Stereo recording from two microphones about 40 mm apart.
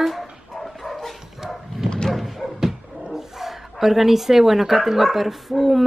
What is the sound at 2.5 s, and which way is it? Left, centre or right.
Speech, centre.